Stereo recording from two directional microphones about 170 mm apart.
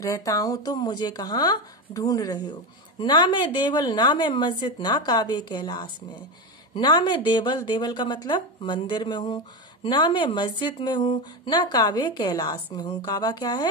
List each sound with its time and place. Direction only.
0.0 s speech: 20° left (ahead or behind)